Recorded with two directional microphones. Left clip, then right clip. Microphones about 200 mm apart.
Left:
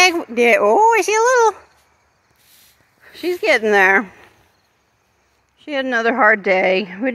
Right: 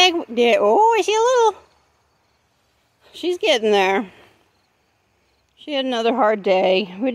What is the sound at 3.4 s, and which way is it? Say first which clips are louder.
Speech: left 3 dB; 5° right (ahead or behind).